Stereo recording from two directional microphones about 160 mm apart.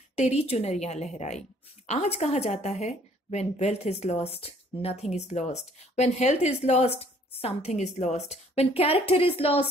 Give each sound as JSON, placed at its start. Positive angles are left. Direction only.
{"t": 0.1, "sound": "a woman's voice", "side_deg": 40}